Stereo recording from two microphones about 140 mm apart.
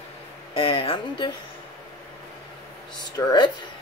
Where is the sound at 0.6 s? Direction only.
40° left (ahead or behind).